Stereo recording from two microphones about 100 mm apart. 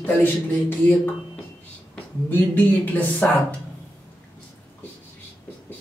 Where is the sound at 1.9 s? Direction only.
15° left (ahead or behind).